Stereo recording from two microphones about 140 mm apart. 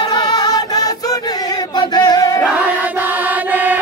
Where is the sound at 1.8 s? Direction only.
30° left (ahead or behind).